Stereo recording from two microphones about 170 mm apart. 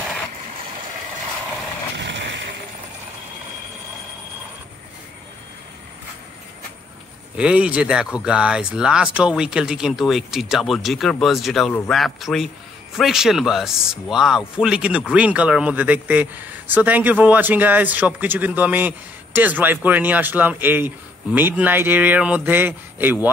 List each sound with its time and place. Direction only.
2.0 s vehicle: 90° right
7.3 s speech: 5° right (ahead or behind)